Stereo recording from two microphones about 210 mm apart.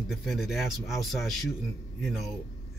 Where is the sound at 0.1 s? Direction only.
Centre (ahead or behind).